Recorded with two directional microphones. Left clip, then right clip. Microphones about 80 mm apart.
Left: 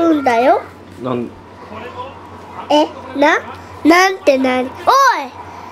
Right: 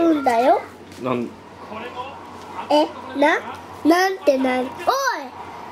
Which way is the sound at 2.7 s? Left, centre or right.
Centre.